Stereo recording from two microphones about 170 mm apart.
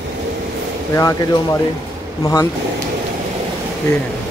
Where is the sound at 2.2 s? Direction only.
20° left (ahead or behind).